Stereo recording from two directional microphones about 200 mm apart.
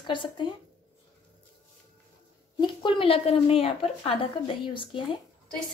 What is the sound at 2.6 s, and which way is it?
A woman's voice, 25° left (ahead or behind).